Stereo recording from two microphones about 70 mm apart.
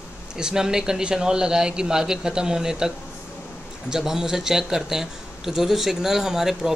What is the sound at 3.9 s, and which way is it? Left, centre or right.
Speech, centre.